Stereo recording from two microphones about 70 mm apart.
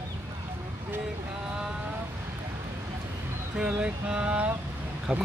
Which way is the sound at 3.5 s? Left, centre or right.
Centre.